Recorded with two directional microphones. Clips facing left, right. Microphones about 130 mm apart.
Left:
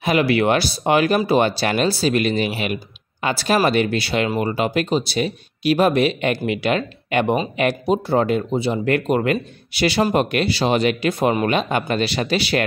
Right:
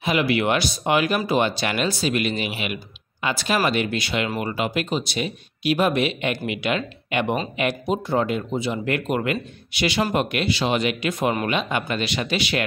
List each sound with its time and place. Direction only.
0.0 s speech: 40° left (ahead or behind)